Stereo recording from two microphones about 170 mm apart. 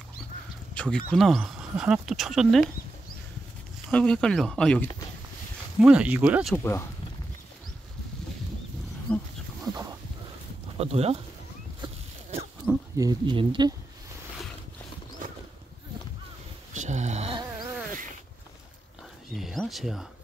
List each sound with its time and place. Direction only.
0.7 s speech: 5° left (ahead or behind)
3.9 s speech: 5° left (ahead or behind)
5.8 s speech: 5° right (ahead or behind)
6.5 s speech: 15° left (ahead or behind)
9.1 s speech: 10° left (ahead or behind)
10.8 s speech: 35° right (ahead or behind)
11.8 s a sound: 35° right (ahead or behind)
12.6 s speech: 20° right (ahead or behind)
16.7 s a sound: 45° right (ahead or behind)
19.3 s a sound: centre (ahead or behind)